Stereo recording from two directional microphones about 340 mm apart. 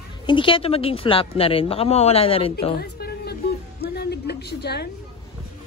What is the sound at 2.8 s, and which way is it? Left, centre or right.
Music, left.